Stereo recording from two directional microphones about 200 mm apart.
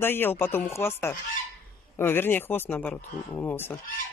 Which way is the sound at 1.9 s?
10° left (ahead or behind).